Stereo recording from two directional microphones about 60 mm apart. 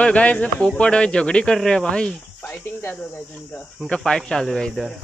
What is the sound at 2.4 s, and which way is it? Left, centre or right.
Cricket, left.